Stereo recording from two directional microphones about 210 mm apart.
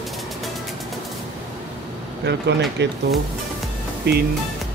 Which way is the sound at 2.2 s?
55° right (ahead or behind).